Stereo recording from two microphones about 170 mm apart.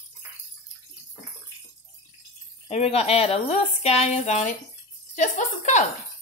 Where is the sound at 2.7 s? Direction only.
40° left (ahead or behind).